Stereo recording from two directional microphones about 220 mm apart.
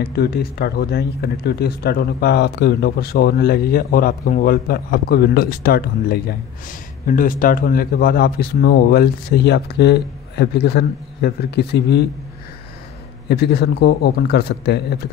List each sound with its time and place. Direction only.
0.0 s speech: 45° left (ahead or behind)
13.3 s speech: 45° left (ahead or behind)